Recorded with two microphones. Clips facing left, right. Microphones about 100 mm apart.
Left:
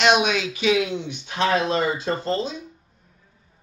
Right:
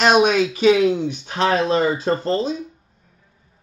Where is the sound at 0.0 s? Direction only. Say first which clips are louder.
Right 4 dB; 40° right (ahead or behind).